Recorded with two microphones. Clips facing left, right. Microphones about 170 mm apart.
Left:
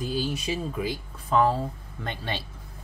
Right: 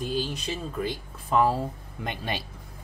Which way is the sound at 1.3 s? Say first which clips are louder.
Left 1 dB; 5° right (ahead or behind).